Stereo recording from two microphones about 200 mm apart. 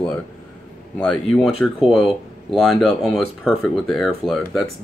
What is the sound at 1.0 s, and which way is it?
Speech, centre (ahead or behind).